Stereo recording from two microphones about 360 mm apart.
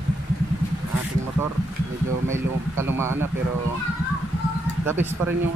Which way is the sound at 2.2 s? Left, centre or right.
Centre.